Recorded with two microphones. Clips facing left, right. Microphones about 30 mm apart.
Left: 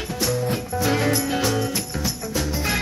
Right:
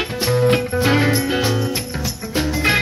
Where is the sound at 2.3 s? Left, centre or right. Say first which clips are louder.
Right 8 dB; right.